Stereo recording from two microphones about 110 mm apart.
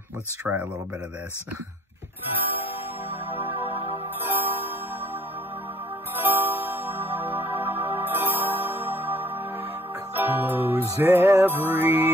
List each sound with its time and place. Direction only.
3.1 s music: 15° right (ahead or behind)
6.1 s music: 20° right (ahead or behind)